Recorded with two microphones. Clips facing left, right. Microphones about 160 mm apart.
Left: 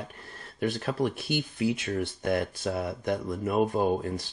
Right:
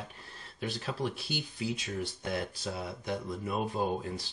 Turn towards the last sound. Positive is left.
turn(degrees=50)  # may be behind; listen again after turning